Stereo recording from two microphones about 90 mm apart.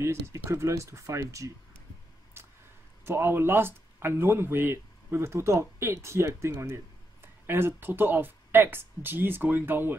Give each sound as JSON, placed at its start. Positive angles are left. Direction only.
{"t": 0.0, "sound": "speech", "side_deg": -30}
{"t": 2.4, "sound": "a sound", "side_deg": -30}
{"t": 3.1, "sound": "speech", "side_deg": -25}